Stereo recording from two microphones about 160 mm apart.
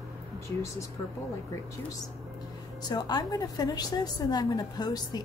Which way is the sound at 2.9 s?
25° left (ahead or behind).